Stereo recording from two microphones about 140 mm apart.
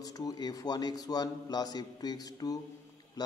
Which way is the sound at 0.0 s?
25° left (ahead or behind).